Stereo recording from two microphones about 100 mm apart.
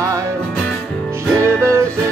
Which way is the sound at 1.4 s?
25° right (ahead or behind).